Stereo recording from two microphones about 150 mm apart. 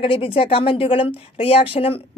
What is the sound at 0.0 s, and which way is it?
A woman's voice, 35° left (ahead or behind).